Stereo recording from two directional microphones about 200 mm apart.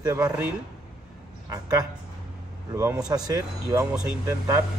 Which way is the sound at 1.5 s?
20° right (ahead or behind).